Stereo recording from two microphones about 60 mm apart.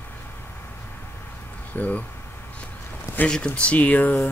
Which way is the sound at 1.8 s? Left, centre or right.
Left.